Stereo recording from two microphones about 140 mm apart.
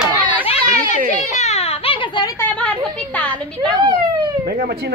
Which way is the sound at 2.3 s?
10° left (ahead or behind).